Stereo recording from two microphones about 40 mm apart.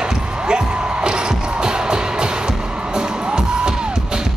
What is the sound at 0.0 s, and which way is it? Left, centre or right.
Music, right.